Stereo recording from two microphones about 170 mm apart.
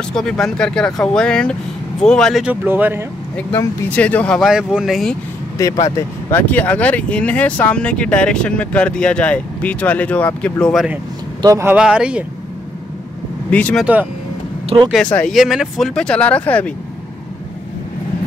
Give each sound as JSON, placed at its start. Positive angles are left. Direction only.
{"t": 0.1, "sound": "speech", "side_deg": 0}
{"t": 3.3, "sound": "speech", "side_deg": 10}
{"t": 5.9, "sound": "speech", "side_deg": 10}
{"t": 11.4, "sound": "speech", "side_deg": -20}
{"t": 11.7, "sound": "speech", "side_deg": -5}
{"t": 13.5, "sound": "speech", "side_deg": 10}
{"t": 14.7, "sound": "speech", "side_deg": -30}
{"t": 15.1, "sound": "speech", "side_deg": 0}